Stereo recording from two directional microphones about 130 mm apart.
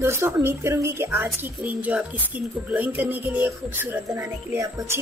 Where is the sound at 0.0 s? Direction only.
20° right (ahead or behind).